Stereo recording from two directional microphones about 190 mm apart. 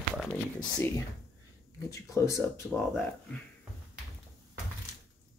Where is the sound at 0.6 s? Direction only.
15° left (ahead or behind).